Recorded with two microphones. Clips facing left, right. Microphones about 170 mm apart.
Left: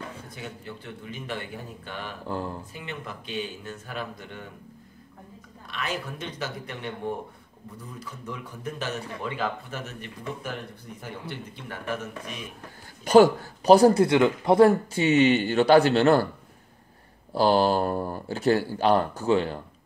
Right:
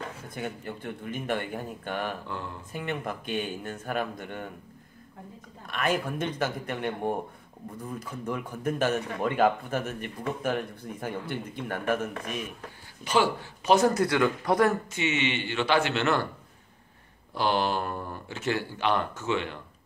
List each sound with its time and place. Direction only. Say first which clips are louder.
0.3 s a man's voice: right 4 dB; 50° right (ahead or behind)
2.2 s speech: left 5 dB; 35° left (ahead or behind)
2.7 s a man's voice: right 5 dB; 55° right (ahead or behind)
5.7 s a man's voice: right 5 dB; 50° right (ahead or behind)
13.0 s speech: left 9 dB; 45° left (ahead or behind)
17.3 s speech: left 6 dB; 35° left (ahead or behind)